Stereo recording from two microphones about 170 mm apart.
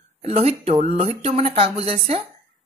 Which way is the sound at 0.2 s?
35° right (ahead or behind).